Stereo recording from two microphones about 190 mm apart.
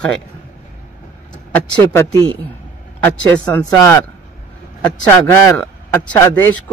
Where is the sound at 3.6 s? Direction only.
15° left (ahead or behind).